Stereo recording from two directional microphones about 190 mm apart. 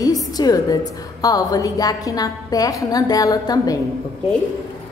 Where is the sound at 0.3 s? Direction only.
20° left (ahead or behind).